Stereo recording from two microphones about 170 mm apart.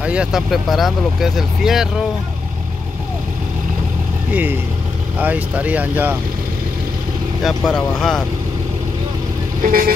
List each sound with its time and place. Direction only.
0.0 s speech: 5° right (ahead or behind)
4.3 s speech: 10° right (ahead or behind)
7.4 s speech: centre (ahead or behind)
9.6 s speech: 55° right (ahead or behind)